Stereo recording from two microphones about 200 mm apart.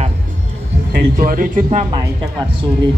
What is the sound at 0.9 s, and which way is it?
Speech, 45° right (ahead or behind).